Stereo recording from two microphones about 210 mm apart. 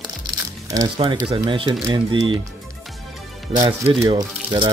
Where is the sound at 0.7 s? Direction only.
20° right (ahead or behind).